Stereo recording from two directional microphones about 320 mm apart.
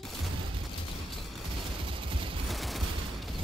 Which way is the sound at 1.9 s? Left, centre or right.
Centre.